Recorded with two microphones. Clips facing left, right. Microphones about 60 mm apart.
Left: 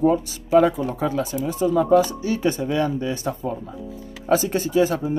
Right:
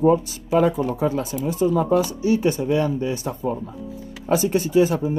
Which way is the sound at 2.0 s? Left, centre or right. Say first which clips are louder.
Right 1 dB; left.